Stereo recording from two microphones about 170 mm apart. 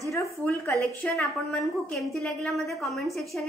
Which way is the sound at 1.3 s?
Centre (ahead or behind).